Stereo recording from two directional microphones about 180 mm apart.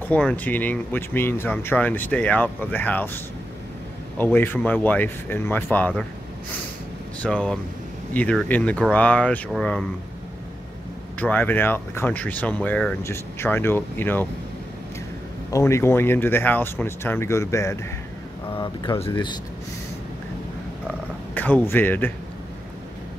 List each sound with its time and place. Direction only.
0.0 s speech: 5° left (ahead or behind)
4.2 s speech: 10° left (ahead or behind)
7.2 s speech: 5° left (ahead or behind)
11.1 s speech: 10° left (ahead or behind)
15.5 s speech: 15° left (ahead or behind)
21.4 s speech: 10° left (ahead or behind)